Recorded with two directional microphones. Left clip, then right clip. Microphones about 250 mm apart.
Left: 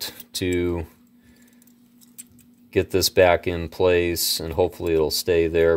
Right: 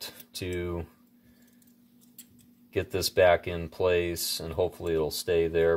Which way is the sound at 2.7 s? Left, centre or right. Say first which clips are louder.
Left 8 dB; left.